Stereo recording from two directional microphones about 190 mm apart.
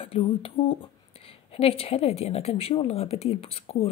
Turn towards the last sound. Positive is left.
turn(degrees=30)  # may be behind; listen again after turning